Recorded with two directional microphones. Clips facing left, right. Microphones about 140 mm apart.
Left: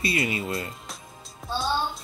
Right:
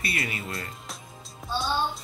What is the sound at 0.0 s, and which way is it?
Speech, 20° left (ahead or behind).